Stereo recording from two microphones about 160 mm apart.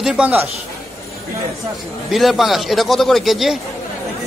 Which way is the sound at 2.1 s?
Centre (ahead or behind).